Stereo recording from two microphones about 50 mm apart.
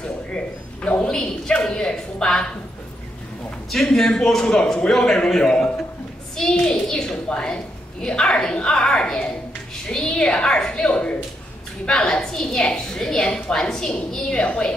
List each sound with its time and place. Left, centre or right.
1.0 s a woman's voice: centre
3.7 s a woman's voice: centre